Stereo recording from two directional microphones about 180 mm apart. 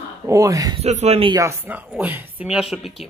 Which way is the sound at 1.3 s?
15° right (ahead or behind).